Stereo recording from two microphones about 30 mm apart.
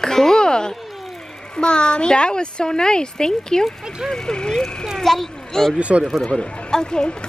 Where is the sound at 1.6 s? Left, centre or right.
Left.